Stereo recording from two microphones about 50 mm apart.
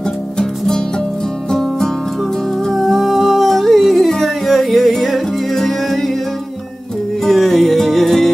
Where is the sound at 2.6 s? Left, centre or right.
Centre.